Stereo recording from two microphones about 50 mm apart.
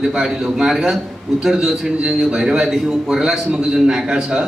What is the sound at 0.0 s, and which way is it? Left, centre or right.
A man's voice, centre.